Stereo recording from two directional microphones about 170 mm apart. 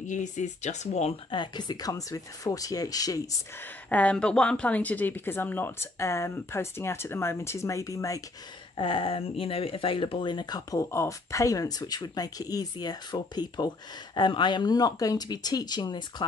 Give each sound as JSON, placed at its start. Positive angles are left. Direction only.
{"t": 0.0, "sound": "speech", "side_deg": 45}
{"t": 3.9, "sound": "speech", "side_deg": 5}
{"t": 8.7, "sound": "speech", "side_deg": 30}